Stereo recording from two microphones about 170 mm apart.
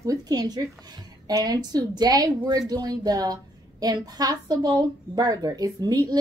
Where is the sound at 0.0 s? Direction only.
20° right (ahead or behind).